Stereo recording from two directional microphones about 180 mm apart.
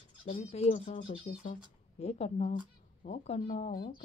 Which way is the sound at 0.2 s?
35° left (ahead or behind).